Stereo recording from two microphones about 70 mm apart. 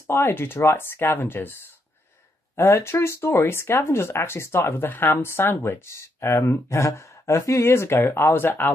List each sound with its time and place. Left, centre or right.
0.1 s speech: left